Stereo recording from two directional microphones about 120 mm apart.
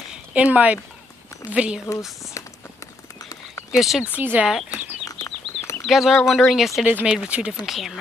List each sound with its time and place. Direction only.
0.1 s a sound: 10° right (ahead or behind)
1.5 s speech: 10° right (ahead or behind)
2.4 s run: 25° left (ahead or behind)
3.7 s speech: centre (ahead or behind)
4.2 s speech: 15° right (ahead or behind)
5.0 s bird flight: 30° left (ahead or behind)
5.9 s speech: 5° right (ahead or behind)
6.9 s speech: 15° right (ahead or behind)